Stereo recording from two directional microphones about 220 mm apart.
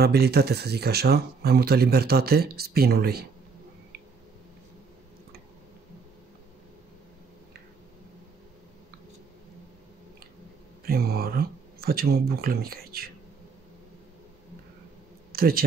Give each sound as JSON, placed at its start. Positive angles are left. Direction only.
{"t": 0.0, "sound": "speech", "side_deg": -45}
{"t": 10.9, "sound": "speech", "side_deg": -45}
{"t": 15.3, "sound": "speech", "side_deg": -45}